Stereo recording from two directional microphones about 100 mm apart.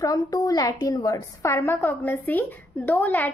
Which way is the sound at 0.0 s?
40° left (ahead or behind).